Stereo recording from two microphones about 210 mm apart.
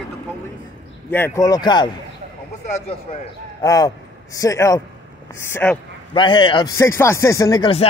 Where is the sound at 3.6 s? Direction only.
15° left (ahead or behind).